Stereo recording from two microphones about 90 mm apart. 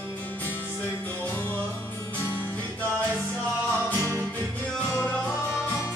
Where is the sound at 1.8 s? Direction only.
30° left (ahead or behind).